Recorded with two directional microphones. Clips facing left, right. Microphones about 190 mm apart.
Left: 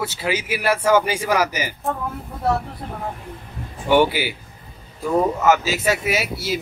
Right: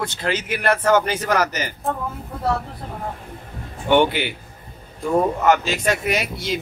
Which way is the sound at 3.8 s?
5° left (ahead or behind).